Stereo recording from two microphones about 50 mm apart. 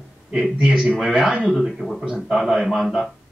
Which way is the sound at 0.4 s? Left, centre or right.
Centre.